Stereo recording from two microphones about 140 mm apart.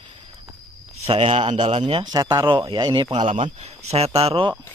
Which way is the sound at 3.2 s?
45° right (ahead or behind).